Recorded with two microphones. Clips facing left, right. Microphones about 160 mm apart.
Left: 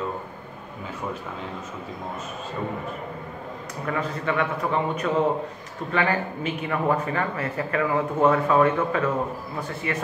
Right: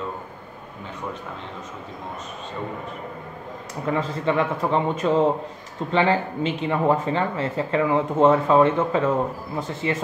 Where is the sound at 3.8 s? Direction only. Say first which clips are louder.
Right 4 dB; 30° right (ahead or behind).